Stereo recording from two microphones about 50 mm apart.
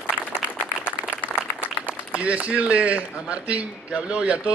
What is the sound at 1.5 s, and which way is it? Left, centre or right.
A man's voice, right.